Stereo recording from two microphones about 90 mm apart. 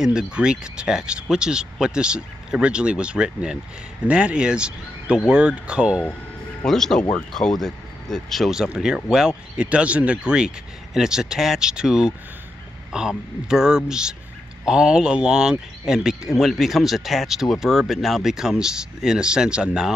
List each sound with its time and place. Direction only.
0.0 s speech: 10° right (ahead or behind)
6.6 s speech: 5° left (ahead or behind)